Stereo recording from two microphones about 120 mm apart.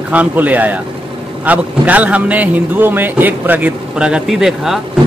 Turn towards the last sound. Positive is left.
turn(degrees=-5)  # may be behind; listen again after turning